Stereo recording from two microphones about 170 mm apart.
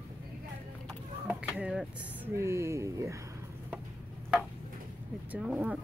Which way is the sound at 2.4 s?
15° right (ahead or behind).